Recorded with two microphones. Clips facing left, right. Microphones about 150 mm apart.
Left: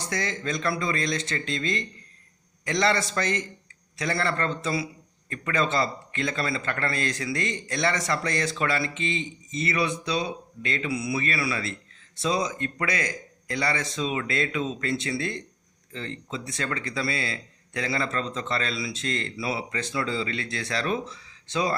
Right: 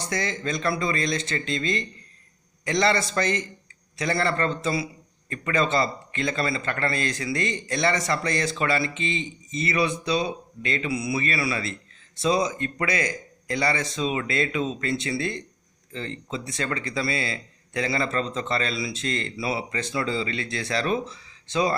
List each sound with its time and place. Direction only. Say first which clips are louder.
0.1 s a man's voice: right 1 dB; centre (ahead or behind)